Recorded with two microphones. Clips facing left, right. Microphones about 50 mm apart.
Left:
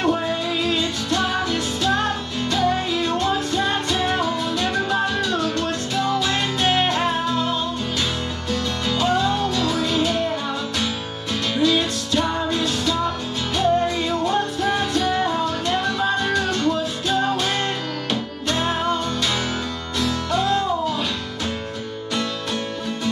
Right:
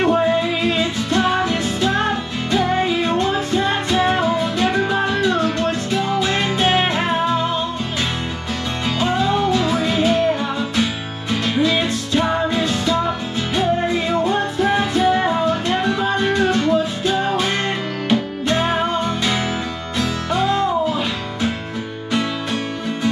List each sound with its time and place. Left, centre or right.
0.1 s music: centre
8.8 s music: right
11.4 s music: centre
22.1 s music: centre